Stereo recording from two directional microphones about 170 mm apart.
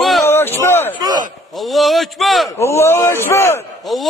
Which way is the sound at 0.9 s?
25° right (ahead or behind).